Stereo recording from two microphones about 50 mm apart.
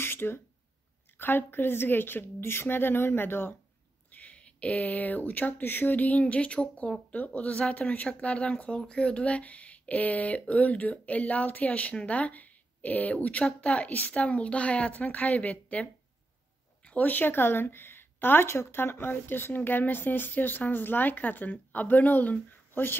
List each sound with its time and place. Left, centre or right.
0.0 s a sound: left
1.1 s a woman's voice: left
4.1 s speech: left